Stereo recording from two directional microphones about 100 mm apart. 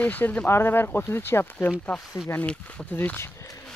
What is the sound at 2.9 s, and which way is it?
Speech, 20° left (ahead or behind).